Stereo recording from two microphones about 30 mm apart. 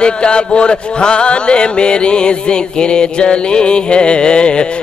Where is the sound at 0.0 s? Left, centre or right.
Left.